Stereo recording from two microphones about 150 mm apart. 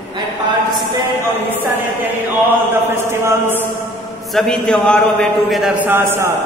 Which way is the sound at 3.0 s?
15° right (ahead or behind).